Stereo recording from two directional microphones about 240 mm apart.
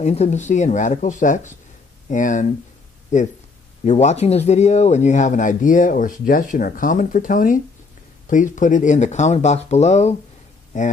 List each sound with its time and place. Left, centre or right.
0.0 s speech: left
3.8 s speech: left